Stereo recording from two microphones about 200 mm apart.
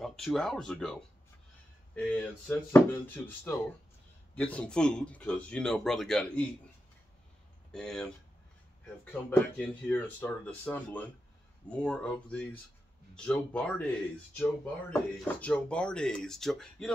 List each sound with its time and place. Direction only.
0.0 s speech: centre (ahead or behind)
2.4 s speech: 10° left (ahead or behind)
4.4 s speech: 5° left (ahead or behind)
7.7 s speech: 5° left (ahead or behind)